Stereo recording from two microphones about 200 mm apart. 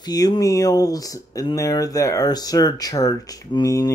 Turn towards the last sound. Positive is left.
turn(degrees=15)  # may be behind; listen again after turning